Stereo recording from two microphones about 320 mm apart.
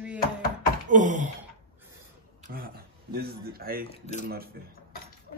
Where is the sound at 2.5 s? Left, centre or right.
Right.